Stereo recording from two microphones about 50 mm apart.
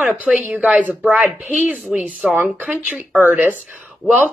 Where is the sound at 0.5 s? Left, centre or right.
Centre.